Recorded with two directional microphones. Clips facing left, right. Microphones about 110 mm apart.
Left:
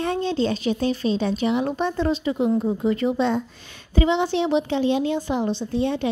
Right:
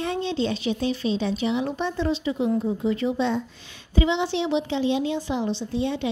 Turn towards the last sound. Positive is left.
turn(degrees=50)  # may be behind; listen again after turning